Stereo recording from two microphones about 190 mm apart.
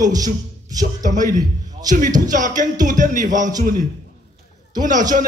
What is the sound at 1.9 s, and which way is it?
Speech, 45° right (ahead or behind).